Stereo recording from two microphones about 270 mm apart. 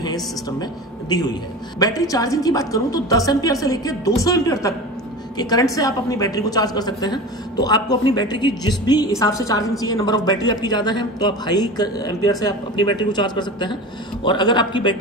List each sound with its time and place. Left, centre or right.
0.0 s a woman's voice: centre